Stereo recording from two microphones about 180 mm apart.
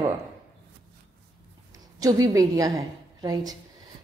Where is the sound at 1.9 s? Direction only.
20° right (ahead or behind).